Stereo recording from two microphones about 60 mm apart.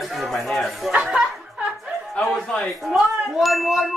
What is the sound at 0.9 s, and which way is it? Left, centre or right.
Speech, right.